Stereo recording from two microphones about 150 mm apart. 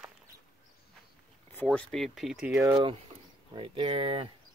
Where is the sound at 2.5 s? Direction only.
20° right (ahead or behind).